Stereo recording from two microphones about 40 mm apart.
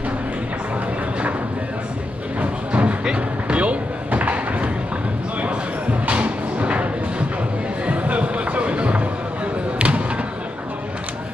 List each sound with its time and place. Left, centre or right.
2.4 s a sound: right
7.8 s music: right
9.8 s basketball bounce: right